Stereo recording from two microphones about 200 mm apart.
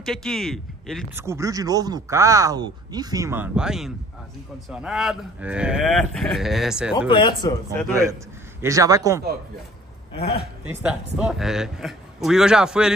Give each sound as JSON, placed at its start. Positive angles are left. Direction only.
{"t": 0.0, "sound": "speech", "side_deg": 0}
{"t": 1.1, "sound": "speech", "side_deg": -15}
{"t": 7.0, "sound": "speech", "side_deg": 20}
{"t": 7.9, "sound": "speech", "side_deg": -15}
{"t": 10.7, "sound": "speech", "side_deg": -10}